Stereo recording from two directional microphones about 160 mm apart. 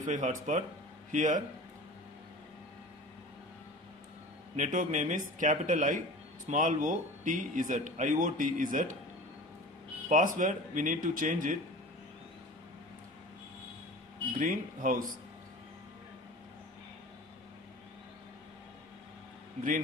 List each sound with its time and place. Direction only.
0.0 s speech: 50° right (ahead or behind)
4.6 s speech: 50° right (ahead or behind)
10.0 s speech: 55° right (ahead or behind)
14.4 s speech: 55° right (ahead or behind)